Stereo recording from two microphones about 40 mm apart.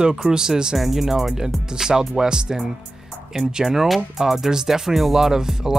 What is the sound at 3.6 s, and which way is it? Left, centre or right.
Speech, centre.